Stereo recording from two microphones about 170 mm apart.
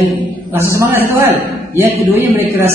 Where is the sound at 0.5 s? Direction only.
15° right (ahead or behind).